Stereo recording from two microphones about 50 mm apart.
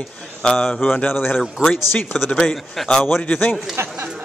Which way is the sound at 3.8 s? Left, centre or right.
Right.